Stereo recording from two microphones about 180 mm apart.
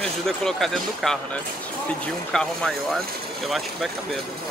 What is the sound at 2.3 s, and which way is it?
Speech, 5° left (ahead or behind).